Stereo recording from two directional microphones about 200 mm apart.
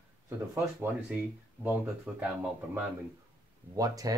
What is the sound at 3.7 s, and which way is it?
Speech, 15° right (ahead or behind).